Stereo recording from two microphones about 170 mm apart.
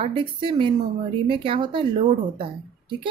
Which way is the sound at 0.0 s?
30° right (ahead or behind).